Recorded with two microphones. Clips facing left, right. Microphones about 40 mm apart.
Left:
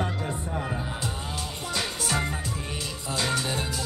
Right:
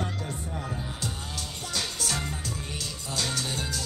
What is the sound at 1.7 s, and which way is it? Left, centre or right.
Music, left.